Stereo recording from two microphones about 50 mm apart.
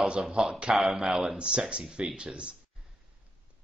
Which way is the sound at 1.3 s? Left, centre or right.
Centre.